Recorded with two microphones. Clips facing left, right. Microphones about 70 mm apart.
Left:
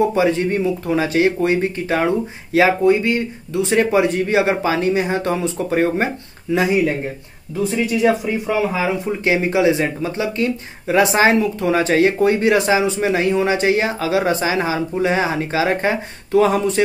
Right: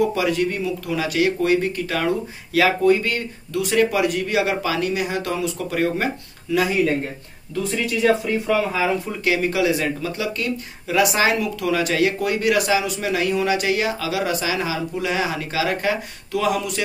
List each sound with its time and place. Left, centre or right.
0.0 s speech: left